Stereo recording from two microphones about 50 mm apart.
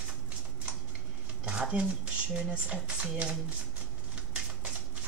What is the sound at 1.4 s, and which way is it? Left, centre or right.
Speech, centre.